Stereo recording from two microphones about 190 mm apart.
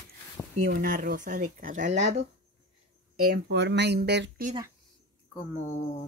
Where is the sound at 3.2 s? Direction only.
55° right (ahead or behind).